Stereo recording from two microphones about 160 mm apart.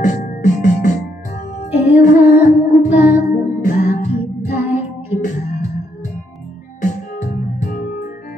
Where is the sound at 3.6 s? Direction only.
50° left (ahead or behind).